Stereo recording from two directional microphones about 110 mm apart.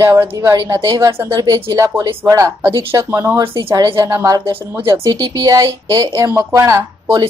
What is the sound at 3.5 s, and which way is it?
Speech, 35° right (ahead or behind).